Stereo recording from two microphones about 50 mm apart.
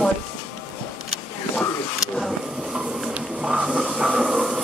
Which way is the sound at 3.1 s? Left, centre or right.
Right.